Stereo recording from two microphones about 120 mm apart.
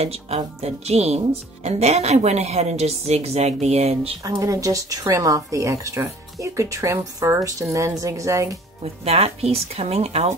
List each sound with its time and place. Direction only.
0.0 s speech: 60° right (ahead or behind)
4.2 s a woman's voice: 30° right (ahead or behind)
9.0 s speech: 60° right (ahead or behind)